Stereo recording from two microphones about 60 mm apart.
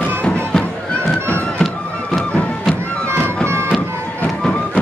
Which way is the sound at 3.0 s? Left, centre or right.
Right.